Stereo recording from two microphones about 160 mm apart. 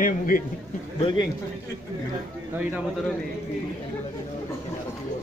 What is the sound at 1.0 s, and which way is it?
Speech, 30° left (ahead or behind).